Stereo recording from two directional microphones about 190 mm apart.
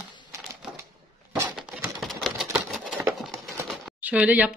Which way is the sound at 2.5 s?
Centre (ahead or behind).